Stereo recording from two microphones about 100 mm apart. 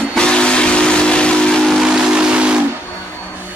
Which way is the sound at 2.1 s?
10° right (ahead or behind).